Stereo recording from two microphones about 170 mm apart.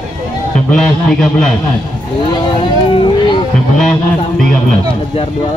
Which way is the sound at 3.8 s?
Centre (ahead or behind).